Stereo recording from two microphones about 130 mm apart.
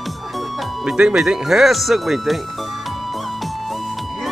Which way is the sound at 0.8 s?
5° right (ahead or behind).